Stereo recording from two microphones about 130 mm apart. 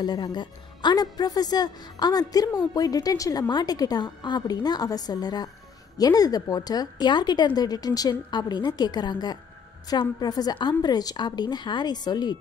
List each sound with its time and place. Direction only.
0.0 s a woman's voice: 30° left (ahead or behind)